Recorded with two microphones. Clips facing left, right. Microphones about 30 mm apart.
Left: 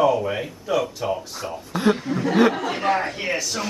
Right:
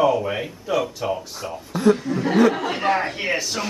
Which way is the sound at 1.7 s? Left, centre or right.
Centre.